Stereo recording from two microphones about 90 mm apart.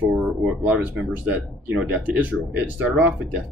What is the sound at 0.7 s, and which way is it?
Speech, 20° right (ahead or behind).